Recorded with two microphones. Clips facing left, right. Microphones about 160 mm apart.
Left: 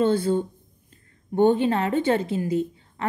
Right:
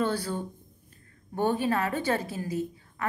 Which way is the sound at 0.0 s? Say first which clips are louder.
Left 8 dB; 25° left (ahead or behind).